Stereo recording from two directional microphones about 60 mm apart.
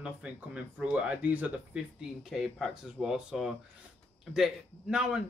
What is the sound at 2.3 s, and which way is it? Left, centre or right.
Speech, centre.